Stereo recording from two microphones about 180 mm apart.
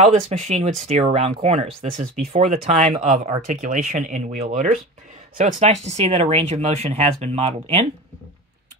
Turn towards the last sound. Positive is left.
turn(degrees=-35)  # may be behind; listen again after turning